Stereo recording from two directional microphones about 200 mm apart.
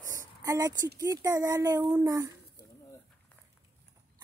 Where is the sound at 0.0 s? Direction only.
15° right (ahead or behind).